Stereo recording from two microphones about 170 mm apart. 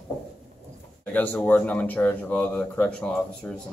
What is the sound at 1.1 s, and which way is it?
Speech, 10° left (ahead or behind).